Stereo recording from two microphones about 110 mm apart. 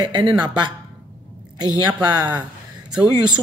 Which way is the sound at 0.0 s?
40° right (ahead or behind).